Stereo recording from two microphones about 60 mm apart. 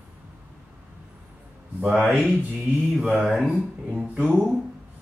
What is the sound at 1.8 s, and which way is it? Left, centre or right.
Mantra, centre.